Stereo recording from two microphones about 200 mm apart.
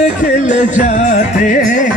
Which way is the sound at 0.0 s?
40° left (ahead or behind).